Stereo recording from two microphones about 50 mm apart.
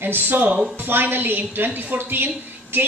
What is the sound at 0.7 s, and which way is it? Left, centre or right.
A woman's voice, right.